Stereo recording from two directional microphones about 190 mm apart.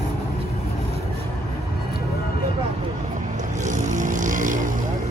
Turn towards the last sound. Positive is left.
turn(degrees=-45)  # may be behind; listen again after turning